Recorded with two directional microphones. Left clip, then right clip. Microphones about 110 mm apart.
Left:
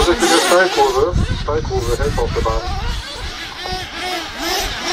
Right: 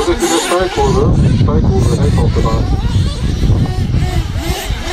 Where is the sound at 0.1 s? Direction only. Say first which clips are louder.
Even; 35° left (ahead or behind).